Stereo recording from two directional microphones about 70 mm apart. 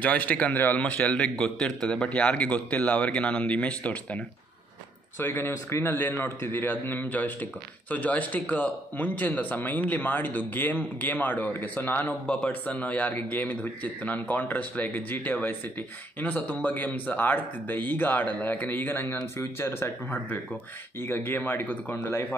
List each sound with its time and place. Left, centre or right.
0.0 s a man's voice: left
5.2 s a man's voice: left